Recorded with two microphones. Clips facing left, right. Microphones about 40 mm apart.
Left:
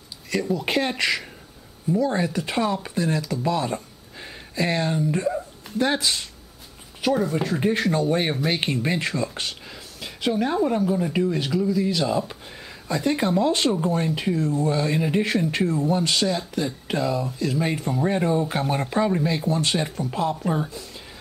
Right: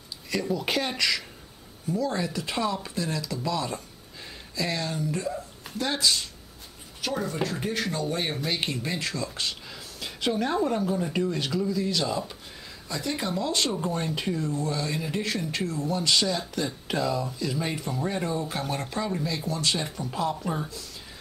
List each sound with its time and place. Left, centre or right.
0.3 s speech: centre
0.7 s speech: left
7.1 s speech: centre
7.9 s speech: left
9.9 s speech: centre; by 13.7 s left
13.7 s speech: centre
14.5 s speech: left
16.2 s speech: centre; by 19.9 s left
20.0 s speech: centre